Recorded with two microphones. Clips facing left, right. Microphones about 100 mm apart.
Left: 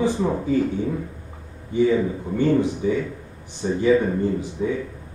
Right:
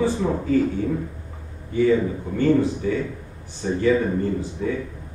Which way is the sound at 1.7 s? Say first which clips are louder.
Even; 15° left (ahead or behind).